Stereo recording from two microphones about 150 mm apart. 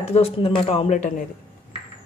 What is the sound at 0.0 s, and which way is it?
Speech, 40° left (ahead or behind).